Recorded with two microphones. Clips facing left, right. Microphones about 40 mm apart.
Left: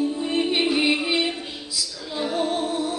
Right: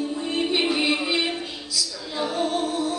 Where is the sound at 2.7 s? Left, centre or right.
Centre.